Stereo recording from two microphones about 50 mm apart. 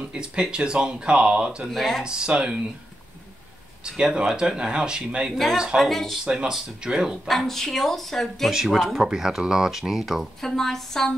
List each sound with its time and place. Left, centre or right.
0.1 s speech: centre
1.7 s speech: centre
2.0 s speech: centre
3.8 s speech: centre
5.8 s speech: centre
6.2 s speech: centre
7.2 s speech: centre
8.5 s speech: centre
10.5 s a woman's voice: centre